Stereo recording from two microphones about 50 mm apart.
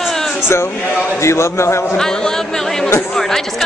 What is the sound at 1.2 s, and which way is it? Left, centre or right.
Speech, left.